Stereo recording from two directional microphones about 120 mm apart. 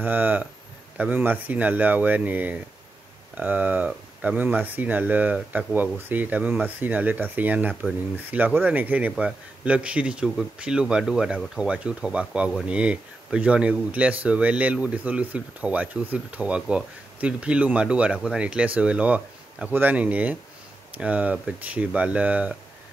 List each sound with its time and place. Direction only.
0.0 s speech: 15° right (ahead or behind)